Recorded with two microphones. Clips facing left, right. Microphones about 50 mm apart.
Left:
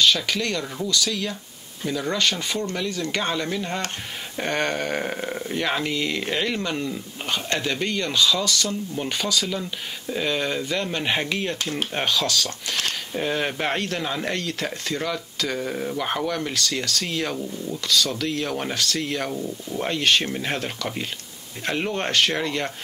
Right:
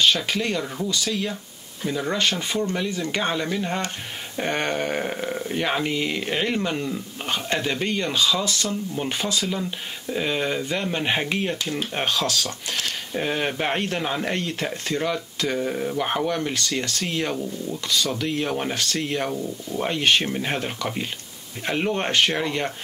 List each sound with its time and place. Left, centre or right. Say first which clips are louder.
0.0 s speech: even; centre
5.0 s speech: right 1 dB; centre
5.6 s speech: even; centre
13.7 s speech: right 1 dB; right
15.0 s speech: right 4 dB; centre
16.0 s speech: right 2 dB; centre
16.5 s speech: even; right
17.2 s speech: right 1 dB; centre
19.3 s speech: right 1 dB; centre
19.9 s speech: even; centre